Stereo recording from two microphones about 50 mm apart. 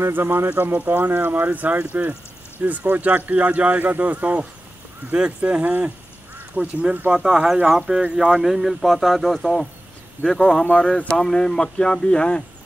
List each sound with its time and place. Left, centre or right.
0.1 s speech: right
7.2 s speech: centre
8.0 s speech: centre
8.4 s speech: centre
10.6 s speech: left